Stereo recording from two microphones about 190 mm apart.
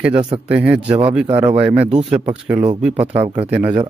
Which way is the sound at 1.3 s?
30° right (ahead or behind).